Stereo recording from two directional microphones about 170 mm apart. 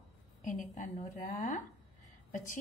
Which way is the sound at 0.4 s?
45° left (ahead or behind).